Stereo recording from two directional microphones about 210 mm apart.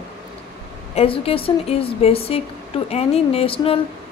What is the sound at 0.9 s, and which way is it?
A woman's voice, 25° left (ahead or behind).